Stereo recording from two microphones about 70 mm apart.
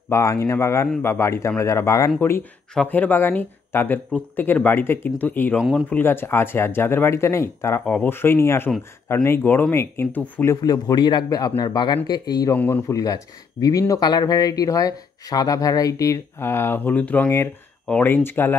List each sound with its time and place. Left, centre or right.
0.1 s speech: left
2.9 s speech: left
5.6 s speech: centre
5.9 s speech: left
10.6 s a man's voice: left
16.3 s speech: left